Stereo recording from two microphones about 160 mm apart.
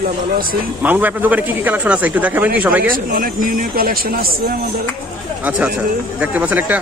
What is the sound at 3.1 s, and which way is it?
Speech, 60° right (ahead or behind).